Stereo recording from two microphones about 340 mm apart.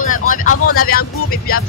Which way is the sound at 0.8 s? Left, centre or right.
Left.